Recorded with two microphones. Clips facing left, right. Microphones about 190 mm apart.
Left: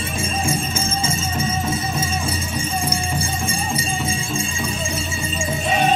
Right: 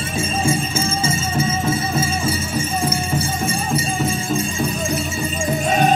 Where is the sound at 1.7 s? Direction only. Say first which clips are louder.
Right 3 dB; 5° right (ahead or behind).